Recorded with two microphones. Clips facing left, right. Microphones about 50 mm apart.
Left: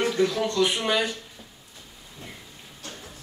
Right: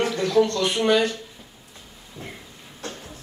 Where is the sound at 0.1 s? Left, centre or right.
Centre.